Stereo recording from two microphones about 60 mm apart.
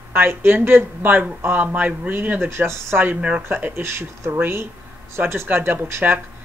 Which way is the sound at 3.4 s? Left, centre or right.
Right.